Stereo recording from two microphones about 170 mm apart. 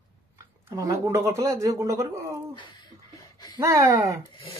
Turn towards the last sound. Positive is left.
turn(degrees=30)  # may be behind; listen again after turning